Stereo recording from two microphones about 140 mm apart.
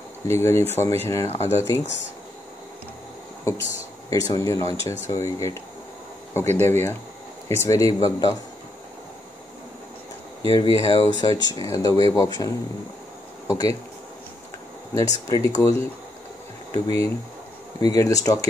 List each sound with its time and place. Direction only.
0.3 s speech: 20° left (ahead or behind)
4.1 s speech: 25° left (ahead or behind)
10.4 s speech: 30° left (ahead or behind)
13.5 s speech: 25° left (ahead or behind)
15.0 s speech: 25° left (ahead or behind)
16.8 s speech: 25° left (ahead or behind)